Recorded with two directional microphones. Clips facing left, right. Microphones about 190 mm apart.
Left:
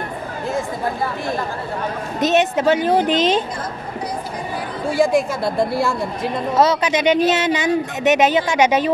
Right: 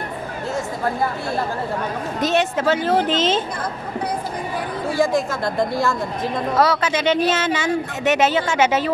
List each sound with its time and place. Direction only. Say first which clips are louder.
2.1 s speech: left 3 dB; 20° left (ahead or behind)
4.9 s speech: left 3 dB; 10° left (ahead or behind)
6.5 s speech: left 3 dB; 20° left (ahead or behind)